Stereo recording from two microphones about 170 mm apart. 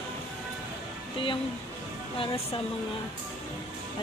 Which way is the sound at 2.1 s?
30° left (ahead or behind).